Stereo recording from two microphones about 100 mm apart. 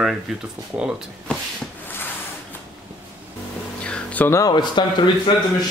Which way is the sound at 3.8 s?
15° left (ahead or behind).